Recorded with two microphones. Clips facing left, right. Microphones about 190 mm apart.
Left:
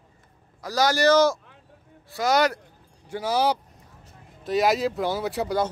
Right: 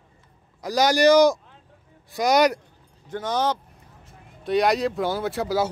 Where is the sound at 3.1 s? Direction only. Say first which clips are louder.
Left 1 dB; 10° left (ahead or behind).